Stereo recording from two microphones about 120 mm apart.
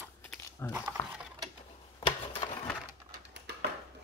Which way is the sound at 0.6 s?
20° left (ahead or behind).